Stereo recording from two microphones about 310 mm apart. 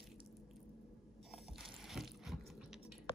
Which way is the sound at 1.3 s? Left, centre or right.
Centre.